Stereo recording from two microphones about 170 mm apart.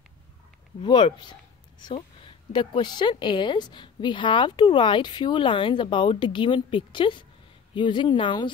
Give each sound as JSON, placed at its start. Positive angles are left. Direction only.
{"t": 0.8, "sound": "a woman's voice", "side_deg": 25}